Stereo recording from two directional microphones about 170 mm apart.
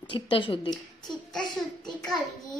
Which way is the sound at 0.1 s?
30° left (ahead or behind).